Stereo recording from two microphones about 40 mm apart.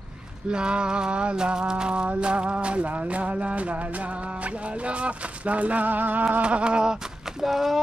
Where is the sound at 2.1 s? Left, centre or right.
Right.